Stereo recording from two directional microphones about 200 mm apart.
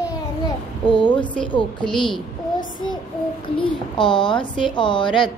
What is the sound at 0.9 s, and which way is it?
Speech, 25° left (ahead or behind).